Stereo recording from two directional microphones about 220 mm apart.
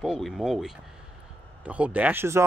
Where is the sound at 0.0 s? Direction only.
Centre (ahead or behind).